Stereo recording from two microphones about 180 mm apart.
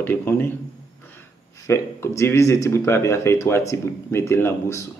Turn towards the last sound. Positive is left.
turn(degrees=15)  # may be behind; listen again after turning